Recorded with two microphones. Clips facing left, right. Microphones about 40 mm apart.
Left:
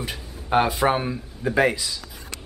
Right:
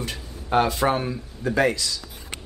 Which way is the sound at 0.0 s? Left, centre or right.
Centre.